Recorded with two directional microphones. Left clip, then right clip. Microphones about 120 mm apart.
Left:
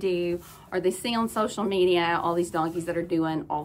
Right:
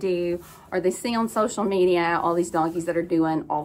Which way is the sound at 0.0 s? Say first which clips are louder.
Right 2 dB; 20° left (ahead or behind).